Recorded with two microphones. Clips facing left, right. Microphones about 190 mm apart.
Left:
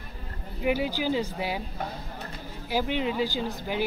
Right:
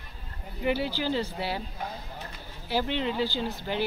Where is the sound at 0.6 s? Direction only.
10° left (ahead or behind).